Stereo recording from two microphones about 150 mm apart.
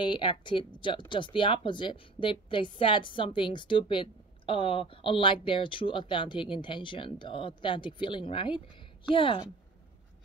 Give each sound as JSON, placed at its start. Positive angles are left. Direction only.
{"t": 0.0, "sound": "a woman's voice", "side_deg": 30}